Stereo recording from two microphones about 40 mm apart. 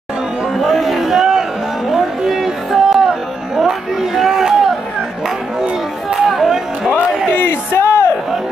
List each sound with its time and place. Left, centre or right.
0.7 s a sound: centre
1.9 s music: centre
6.1 s music: centre
7.3 s crowd: left